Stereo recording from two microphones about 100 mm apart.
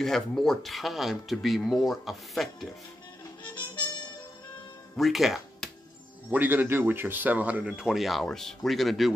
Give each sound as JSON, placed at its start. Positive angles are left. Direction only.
{"t": 0.0, "sound": "speech", "side_deg": 5}
{"t": 3.4, "sound": "music", "side_deg": 50}
{"t": 4.9, "sound": "speech", "side_deg": 0}
{"t": 6.3, "sound": "speech", "side_deg": -20}